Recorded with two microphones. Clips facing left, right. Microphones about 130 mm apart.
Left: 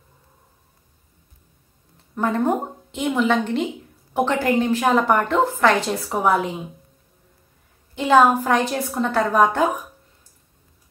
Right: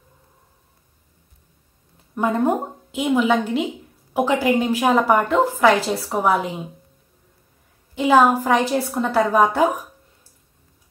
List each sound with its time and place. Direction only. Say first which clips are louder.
2.1 s a woman's voice: right 1 dB; 10° right (ahead or behind)
7.9 s a woman's voice: even; 5° right (ahead or behind)